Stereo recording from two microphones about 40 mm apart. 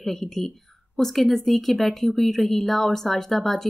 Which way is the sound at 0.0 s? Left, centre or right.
Centre.